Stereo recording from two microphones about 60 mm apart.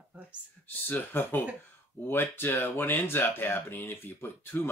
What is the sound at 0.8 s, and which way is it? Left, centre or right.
Speech, left.